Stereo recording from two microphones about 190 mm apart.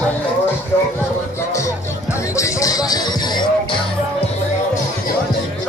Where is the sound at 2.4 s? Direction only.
15° left (ahead or behind).